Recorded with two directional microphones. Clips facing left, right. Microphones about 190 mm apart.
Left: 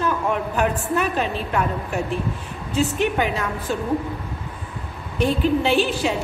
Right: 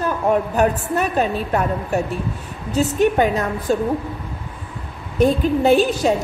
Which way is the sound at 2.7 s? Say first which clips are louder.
Right 4 dB; 40° right (ahead or behind).